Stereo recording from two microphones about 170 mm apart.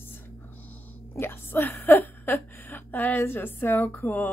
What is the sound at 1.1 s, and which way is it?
A woman's voice, 15° left (ahead or behind).